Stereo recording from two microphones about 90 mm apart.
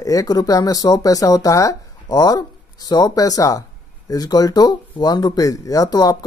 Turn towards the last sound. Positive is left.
turn(degrees=45)  # may be behind; listen again after turning